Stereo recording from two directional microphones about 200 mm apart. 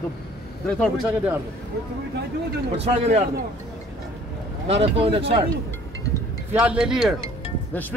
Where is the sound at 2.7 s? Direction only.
35° right (ahead or behind).